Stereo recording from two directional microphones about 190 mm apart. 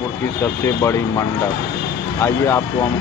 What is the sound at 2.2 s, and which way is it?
Speech, 15° left (ahead or behind).